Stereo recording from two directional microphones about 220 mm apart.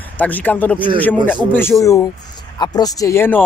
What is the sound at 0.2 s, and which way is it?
Speech, 5° left (ahead or behind).